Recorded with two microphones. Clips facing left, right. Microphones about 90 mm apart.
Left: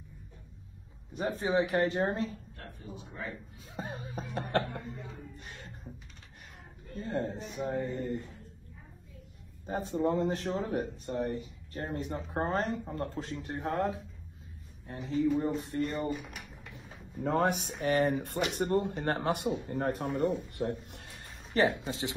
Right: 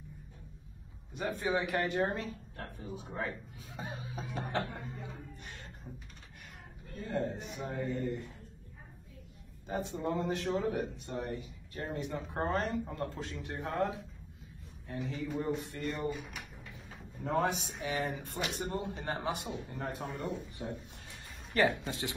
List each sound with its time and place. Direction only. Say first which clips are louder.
1.1 s speech: left 4 dB; 30° left (ahead or behind)
3.7 s speech: left 3 dB; 40° left (ahead or behind)
4.2 s speech: left 4 dB; 60° left (ahead or behind)
7.0 s speech: left 1 dB; 30° left (ahead or behind)
9.7 s speech: left 5 dB; 40° left (ahead or behind)
17.2 s speech: left 3 dB; 60° left (ahead or behind)
21.5 s speech: left 2 dB; 20° left (ahead or behind)